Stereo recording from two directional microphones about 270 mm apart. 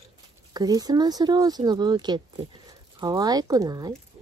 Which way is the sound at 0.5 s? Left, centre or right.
Centre.